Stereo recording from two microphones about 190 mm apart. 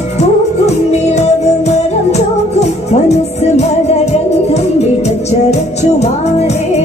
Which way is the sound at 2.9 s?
35° left (ahead or behind).